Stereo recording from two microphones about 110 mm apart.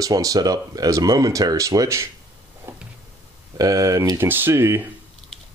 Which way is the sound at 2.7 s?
20° right (ahead or behind).